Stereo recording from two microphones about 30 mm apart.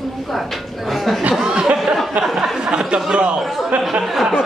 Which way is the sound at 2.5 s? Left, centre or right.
Right.